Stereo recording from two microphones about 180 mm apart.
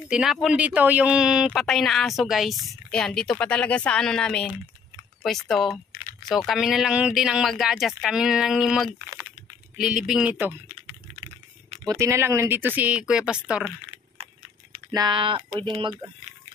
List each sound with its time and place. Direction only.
0.1 s speech: centre (ahead or behind)
12.0 s speech: 15° right (ahead or behind)
14.2 s a sound: 35° right (ahead or behind)
14.9 s speech: 25° right (ahead or behind)